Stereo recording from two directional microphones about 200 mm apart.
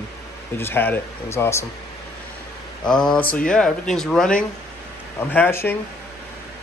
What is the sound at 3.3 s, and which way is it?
Speech, 5° left (ahead or behind).